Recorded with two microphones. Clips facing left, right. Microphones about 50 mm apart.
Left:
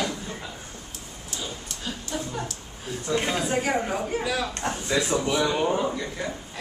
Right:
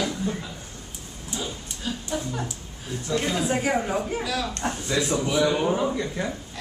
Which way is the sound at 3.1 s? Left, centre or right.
Centre.